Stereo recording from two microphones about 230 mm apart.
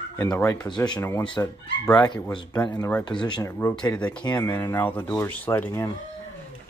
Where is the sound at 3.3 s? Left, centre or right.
Centre.